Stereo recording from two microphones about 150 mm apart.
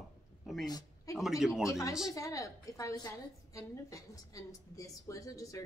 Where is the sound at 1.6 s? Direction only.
20° left (ahead or behind).